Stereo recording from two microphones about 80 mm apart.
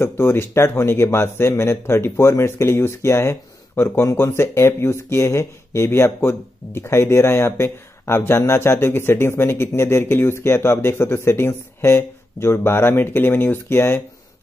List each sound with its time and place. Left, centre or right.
0.0 s speech: left